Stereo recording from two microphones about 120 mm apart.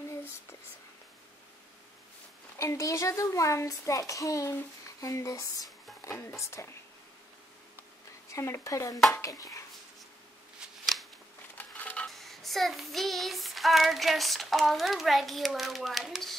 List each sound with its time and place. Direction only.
0.1 s a sound: 20° left (ahead or behind)
2.6 s a child's voice: 25° left (ahead or behind)
8.3 s a child's voice: 25° left (ahead or behind)
10.6 s shuffling cards: centre (ahead or behind)
11.5 s a sound: 15° left (ahead or behind)
12.2 s child singing: centre (ahead or behind)